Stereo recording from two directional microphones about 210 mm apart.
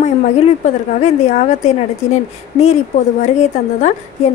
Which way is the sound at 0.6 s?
35° left (ahead or behind).